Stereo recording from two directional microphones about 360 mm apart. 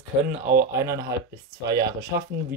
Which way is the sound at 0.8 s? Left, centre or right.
Centre.